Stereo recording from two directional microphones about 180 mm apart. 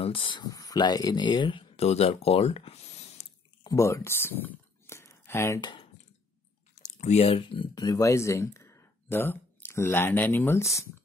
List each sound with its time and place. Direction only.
0.0 s speech: 30° left (ahead or behind)
3.6 s a sound: 15° left (ahead or behind)
6.8 s speech: 40° left (ahead or behind); by 10.9 s 15° left (ahead or behind)